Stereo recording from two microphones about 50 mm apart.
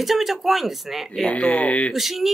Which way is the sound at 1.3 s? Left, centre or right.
Left.